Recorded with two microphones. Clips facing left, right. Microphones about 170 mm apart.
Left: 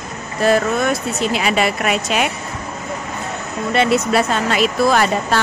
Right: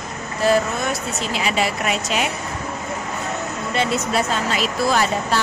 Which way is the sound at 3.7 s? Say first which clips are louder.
Left 5 dB; 70° left (ahead or behind).